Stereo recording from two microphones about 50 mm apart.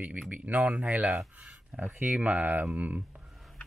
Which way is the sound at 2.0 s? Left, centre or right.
Right.